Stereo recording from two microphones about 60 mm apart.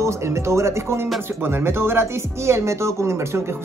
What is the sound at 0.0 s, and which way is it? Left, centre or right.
A man's voice, right.